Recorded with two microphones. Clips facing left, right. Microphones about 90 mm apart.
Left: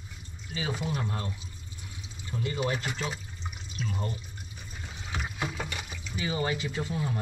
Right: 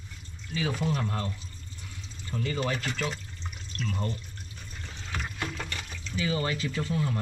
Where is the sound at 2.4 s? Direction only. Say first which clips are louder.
Even; 15° left (ahead or behind).